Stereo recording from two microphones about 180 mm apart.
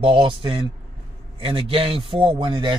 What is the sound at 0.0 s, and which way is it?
A man's voice, 30° right (ahead or behind).